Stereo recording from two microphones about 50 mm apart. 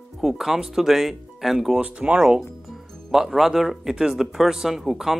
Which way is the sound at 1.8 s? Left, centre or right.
Right.